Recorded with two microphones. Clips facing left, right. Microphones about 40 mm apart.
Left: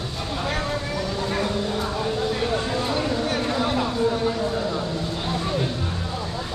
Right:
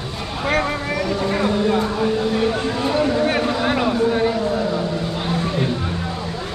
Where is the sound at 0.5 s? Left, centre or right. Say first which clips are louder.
Right 6 dB; right.